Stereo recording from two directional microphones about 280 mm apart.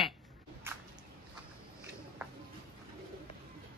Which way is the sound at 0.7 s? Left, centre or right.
Centre.